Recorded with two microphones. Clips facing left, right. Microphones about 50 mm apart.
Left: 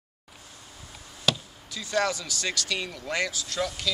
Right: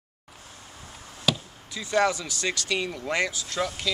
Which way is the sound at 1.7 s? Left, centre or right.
Right.